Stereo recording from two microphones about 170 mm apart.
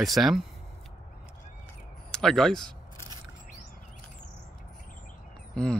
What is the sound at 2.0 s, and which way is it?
Speech, 5° left (ahead or behind).